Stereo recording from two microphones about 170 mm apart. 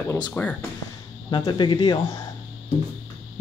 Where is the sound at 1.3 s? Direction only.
25° left (ahead or behind).